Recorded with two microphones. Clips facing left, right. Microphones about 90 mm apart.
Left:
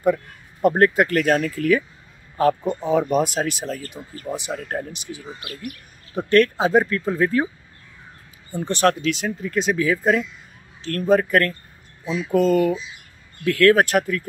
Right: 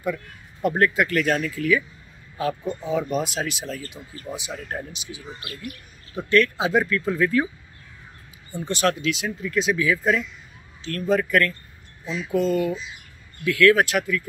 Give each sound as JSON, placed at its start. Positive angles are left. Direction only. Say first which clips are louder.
{"t": 0.0, "sound": "speech", "louder": "left 8 dB", "side_deg": 45}
{"t": 8.6, "sound": "speech", "louder": "left 3 dB", "side_deg": 40}
{"t": 12.0, "sound": "speech", "louder": "left 4 dB", "side_deg": 15}
{"t": 12.3, "sound": "speech", "louder": "left 4 dB", "side_deg": 50}